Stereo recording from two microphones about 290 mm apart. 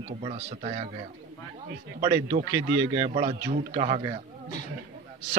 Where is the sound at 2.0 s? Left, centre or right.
Right.